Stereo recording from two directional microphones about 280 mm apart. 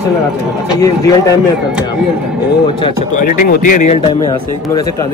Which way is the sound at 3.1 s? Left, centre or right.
Left.